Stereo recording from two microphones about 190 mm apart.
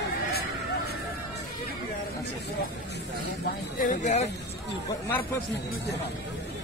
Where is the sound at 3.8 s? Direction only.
40° left (ahead or behind).